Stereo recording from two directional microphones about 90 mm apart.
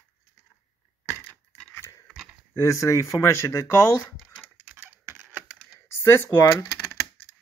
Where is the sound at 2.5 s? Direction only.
35° left (ahead or behind).